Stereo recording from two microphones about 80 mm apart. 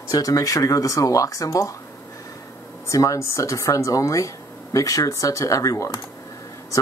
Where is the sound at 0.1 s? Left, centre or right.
Left.